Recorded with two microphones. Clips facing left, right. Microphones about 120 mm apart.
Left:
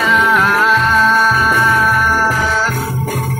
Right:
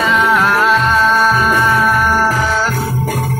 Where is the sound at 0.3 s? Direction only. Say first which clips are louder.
Right 1 dB; 5° right (ahead or behind).